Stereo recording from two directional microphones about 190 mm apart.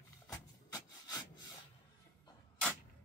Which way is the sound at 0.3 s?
20° left (ahead or behind).